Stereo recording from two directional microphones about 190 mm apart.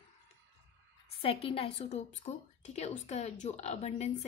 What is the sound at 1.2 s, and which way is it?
Speech, 30° left (ahead or behind).